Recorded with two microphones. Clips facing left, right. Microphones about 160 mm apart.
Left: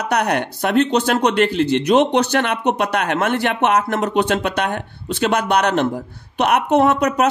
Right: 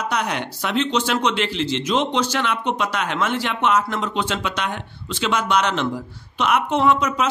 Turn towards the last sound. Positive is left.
turn(degrees=60)  # may be behind; listen again after turning